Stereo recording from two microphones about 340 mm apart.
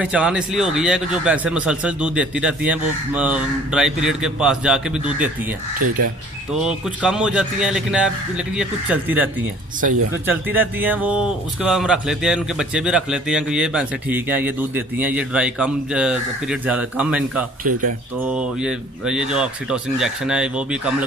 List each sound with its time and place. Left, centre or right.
0.0 s speech: centre
6.6 s speech: centre
9.8 s speech: right
10.2 s speech: centre